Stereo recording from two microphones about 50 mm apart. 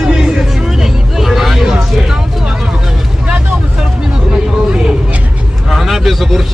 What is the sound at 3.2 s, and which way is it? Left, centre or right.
Vehicle, right.